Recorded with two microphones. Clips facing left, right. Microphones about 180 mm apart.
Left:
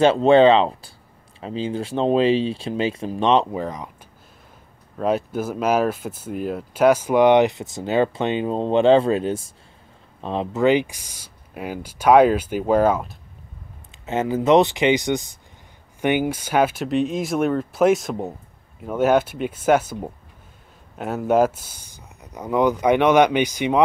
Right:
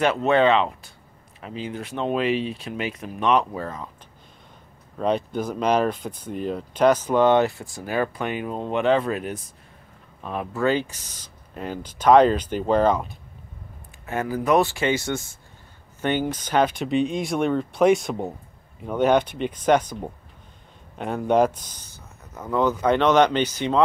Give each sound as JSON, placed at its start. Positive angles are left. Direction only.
{"t": 0.0, "sound": "speech", "side_deg": 30}
{"t": 4.9, "sound": "speech", "side_deg": 5}
{"t": 14.0, "sound": "speech", "side_deg": 20}